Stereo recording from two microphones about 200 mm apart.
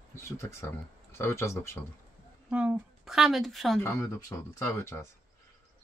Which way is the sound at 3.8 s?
15° left (ahead or behind).